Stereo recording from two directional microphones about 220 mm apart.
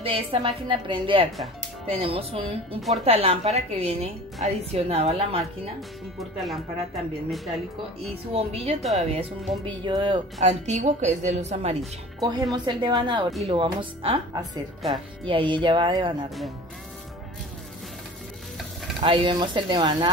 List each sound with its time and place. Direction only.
0.0 s speech: 25° right (ahead or behind)
7.2 s speech: centre (ahead or behind)
8.0 s speech: 25° right (ahead or behind)
12.2 s speech: 15° right (ahead or behind)
18.9 s speech: 25° right (ahead or behind)